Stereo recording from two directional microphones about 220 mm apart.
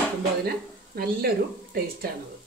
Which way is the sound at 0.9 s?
45° right (ahead or behind).